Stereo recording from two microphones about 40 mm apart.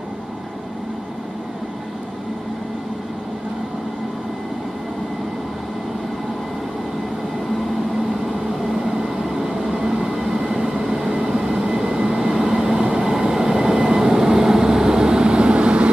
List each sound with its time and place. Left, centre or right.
8.9 s vehicle: centre
10.8 s train: centre; by 15.9 s right